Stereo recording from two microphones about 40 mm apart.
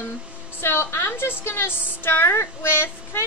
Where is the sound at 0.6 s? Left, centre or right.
Left.